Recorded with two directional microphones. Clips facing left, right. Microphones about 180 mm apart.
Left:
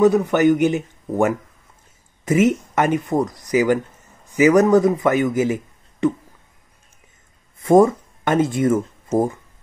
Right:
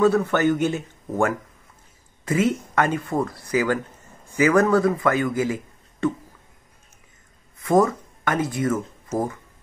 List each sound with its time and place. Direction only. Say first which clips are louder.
0.0 s a man's voice: left 4 dB; 15° left (ahead or behind)
7.5 s speech: left 5 dB; 25° left (ahead or behind)